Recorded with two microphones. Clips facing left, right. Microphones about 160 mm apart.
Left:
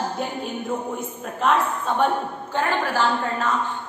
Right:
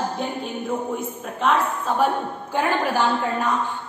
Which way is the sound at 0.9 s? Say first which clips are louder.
Right 2 dB; centre (ahead or behind).